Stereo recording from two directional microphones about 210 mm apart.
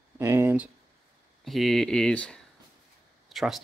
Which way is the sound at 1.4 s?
Centre (ahead or behind).